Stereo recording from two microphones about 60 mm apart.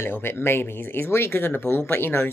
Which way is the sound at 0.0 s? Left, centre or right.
Left.